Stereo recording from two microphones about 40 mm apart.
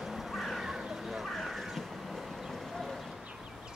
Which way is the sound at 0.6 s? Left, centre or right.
Centre.